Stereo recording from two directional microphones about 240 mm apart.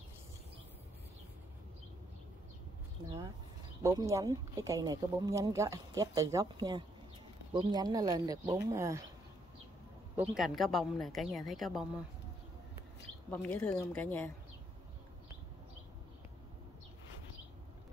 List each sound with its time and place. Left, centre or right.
3.8 s speech: centre
10.1 s a woman's voice: centre
13.3 s a woman's voice: centre